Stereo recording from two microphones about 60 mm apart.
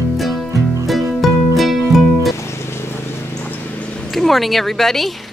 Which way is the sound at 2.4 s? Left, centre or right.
Left.